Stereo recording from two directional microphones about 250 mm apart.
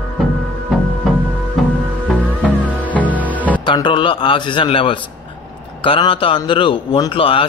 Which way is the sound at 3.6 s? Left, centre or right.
Centre.